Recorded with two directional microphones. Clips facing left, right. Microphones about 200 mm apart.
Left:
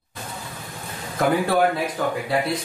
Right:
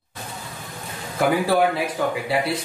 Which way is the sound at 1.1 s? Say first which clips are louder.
Right 1 dB; 10° right (ahead or behind).